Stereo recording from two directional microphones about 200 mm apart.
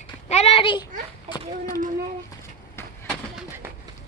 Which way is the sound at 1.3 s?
20° left (ahead or behind).